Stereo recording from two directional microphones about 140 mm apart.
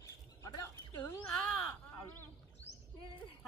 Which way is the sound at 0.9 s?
15° left (ahead or behind).